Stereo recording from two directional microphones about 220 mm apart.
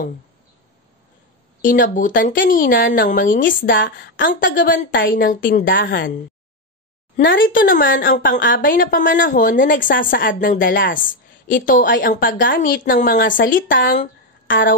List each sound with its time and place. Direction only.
1.6 s a woman's voice: 35° left (ahead or behind)
7.2 s a woman's voice: 40° left (ahead or behind)